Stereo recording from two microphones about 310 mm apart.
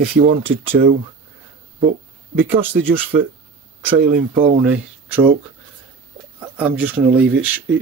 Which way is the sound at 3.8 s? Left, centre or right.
Right.